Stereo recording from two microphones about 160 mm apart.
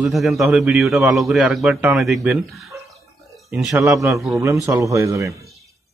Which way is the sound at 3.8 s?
20° right (ahead or behind).